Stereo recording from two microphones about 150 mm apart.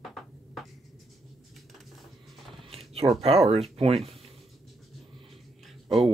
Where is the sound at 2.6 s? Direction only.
40° right (ahead or behind).